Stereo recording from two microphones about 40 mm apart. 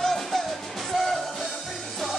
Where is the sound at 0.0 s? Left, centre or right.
Centre.